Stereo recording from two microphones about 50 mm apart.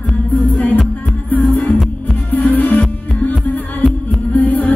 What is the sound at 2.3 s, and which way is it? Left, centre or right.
Music, left.